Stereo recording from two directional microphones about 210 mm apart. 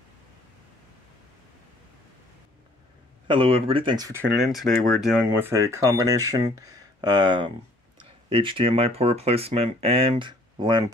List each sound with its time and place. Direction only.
3.3 s speech: 25° right (ahead or behind)
4.6 s speech: centre (ahead or behind)
5.4 s speech: 15° right (ahead or behind)